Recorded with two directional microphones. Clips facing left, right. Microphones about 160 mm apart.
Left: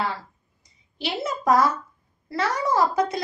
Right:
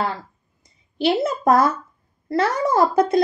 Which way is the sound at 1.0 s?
55° right (ahead or behind).